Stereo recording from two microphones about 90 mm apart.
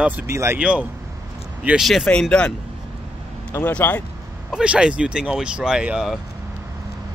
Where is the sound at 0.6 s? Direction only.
10° right (ahead or behind).